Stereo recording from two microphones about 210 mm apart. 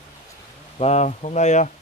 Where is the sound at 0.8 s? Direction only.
30° left (ahead or behind).